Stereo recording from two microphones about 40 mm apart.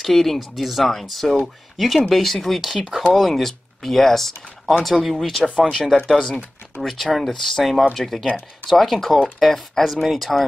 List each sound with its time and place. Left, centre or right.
0.0 s speech: centre
4.9 s speech: centre
5.7 s speech: centre
6.8 s speech: centre